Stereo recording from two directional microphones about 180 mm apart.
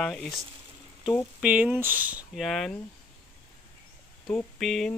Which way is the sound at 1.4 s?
10° right (ahead or behind).